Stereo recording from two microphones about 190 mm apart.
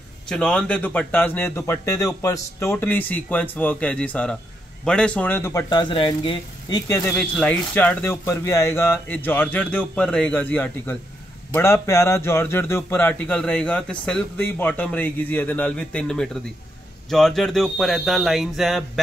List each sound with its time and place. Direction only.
0.3 s a man's voice: 5° left (ahead or behind)
7.2 s a man's voice: 5° left (ahead or behind)